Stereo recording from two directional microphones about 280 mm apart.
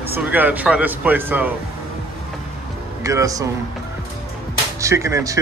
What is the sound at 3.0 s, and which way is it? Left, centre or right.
Speech, centre.